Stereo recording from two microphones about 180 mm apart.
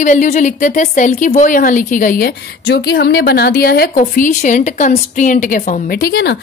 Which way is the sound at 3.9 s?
45° left (ahead or behind).